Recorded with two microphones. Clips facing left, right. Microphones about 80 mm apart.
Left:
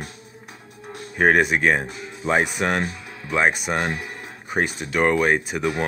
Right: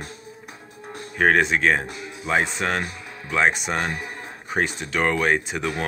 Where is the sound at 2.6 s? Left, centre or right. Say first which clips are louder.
Left 2 dB; centre.